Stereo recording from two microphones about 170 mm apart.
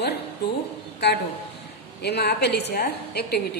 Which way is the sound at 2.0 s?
75° left (ahead or behind).